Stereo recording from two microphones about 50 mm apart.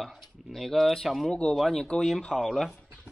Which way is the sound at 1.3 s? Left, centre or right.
Centre.